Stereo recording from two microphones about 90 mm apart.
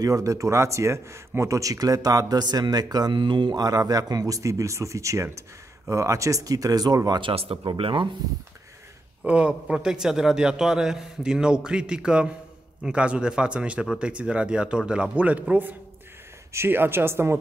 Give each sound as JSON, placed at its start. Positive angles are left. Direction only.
{"t": 0.0, "sound": "speech", "side_deg": -40}
{"t": 7.1, "sound": "speech", "side_deg": -70}
{"t": 9.2, "sound": "a man's voice", "side_deg": -15}